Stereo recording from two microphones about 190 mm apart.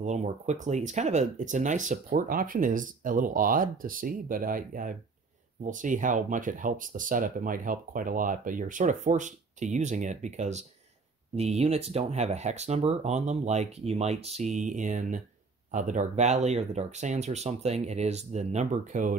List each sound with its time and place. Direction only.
0.0 s speech: 40° right (ahead or behind)